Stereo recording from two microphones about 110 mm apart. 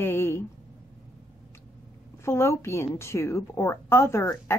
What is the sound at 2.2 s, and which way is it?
A woman's voice, 25° left (ahead or behind).